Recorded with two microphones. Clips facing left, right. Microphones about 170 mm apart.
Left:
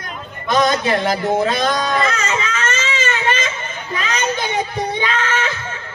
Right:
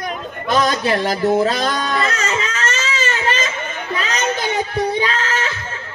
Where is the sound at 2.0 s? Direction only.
40° right (ahead or behind).